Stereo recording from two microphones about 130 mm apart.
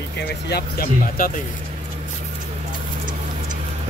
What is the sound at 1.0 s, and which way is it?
Speech, 90° left.